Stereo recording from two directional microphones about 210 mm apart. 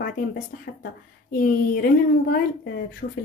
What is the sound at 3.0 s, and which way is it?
Speech, 50° left (ahead or behind).